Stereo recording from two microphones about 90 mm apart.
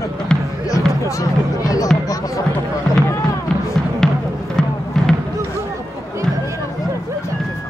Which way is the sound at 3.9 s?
5° left (ahead or behind).